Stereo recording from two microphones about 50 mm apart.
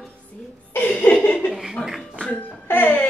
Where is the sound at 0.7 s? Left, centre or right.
Left.